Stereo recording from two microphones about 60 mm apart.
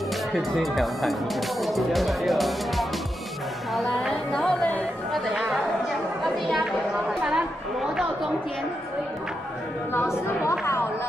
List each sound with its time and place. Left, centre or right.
0.3 s speech: centre
4.3 s speech: centre
6.2 s a woman's voice: centre
10.6 s speech: left